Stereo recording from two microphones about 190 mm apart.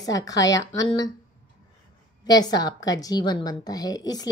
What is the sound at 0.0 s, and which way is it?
A woman's voice, 20° left (ahead or behind).